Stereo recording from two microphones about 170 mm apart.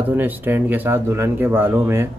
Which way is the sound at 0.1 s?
10° right (ahead or behind).